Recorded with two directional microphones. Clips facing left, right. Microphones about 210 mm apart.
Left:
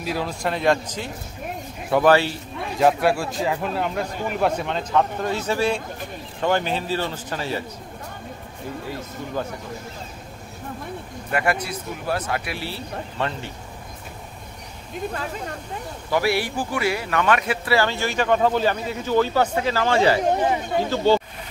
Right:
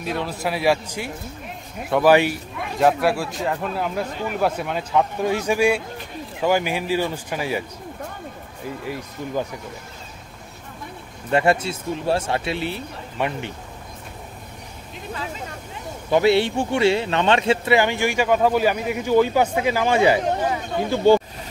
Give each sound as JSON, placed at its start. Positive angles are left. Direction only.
{"t": 0.0, "sound": "speech", "side_deg": 0}
{"t": 2.8, "sound": "speech", "side_deg": 0}
{"t": 8.8, "sound": "speech", "side_deg": -15}
{"t": 11.2, "sound": "speech", "side_deg": -25}
{"t": 16.1, "sound": "speech", "side_deg": -20}